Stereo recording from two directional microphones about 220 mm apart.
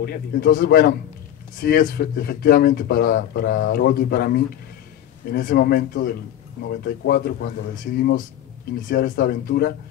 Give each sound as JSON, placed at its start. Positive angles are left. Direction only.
{"t": 0.0, "sound": "speech", "side_deg": 40}